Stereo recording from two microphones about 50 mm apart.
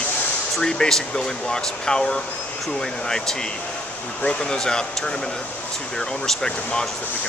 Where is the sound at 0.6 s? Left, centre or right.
Centre.